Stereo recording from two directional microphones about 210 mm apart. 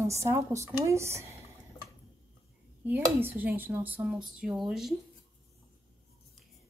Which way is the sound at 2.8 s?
10° right (ahead or behind).